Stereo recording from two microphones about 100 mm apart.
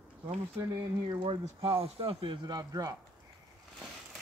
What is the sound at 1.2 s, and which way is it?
Speech, 65° right (ahead or behind).